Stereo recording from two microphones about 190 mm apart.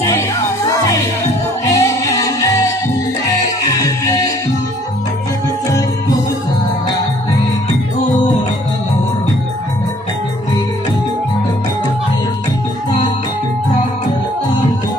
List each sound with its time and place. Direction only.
1.7 s music: 15° left (ahead or behind)
3.3 s music: 20° left (ahead or behind)